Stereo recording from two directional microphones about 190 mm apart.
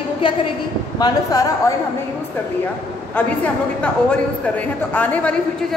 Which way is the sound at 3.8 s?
5° left (ahead or behind).